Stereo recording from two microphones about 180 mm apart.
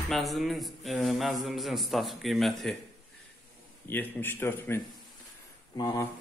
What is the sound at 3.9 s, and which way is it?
Speech, 10° left (ahead or behind).